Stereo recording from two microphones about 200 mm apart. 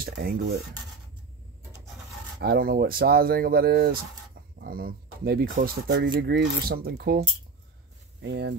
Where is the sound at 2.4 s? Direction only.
45° right (ahead or behind).